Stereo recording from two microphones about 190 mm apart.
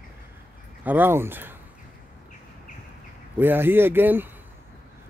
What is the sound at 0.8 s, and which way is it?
Speech, 10° right (ahead or behind).